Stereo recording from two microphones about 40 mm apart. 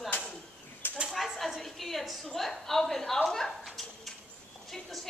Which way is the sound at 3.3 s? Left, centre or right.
Centre.